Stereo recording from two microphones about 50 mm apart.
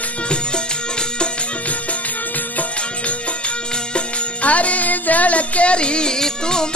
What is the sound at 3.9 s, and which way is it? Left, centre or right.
Music, left.